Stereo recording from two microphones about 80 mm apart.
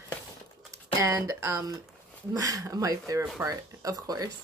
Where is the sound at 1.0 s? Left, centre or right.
Right.